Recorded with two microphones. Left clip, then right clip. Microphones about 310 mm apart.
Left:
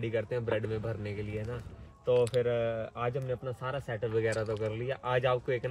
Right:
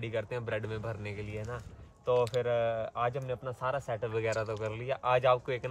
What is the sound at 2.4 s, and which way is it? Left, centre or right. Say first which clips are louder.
Speech: even; centre.